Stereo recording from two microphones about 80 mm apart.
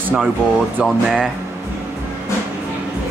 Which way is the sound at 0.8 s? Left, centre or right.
Centre.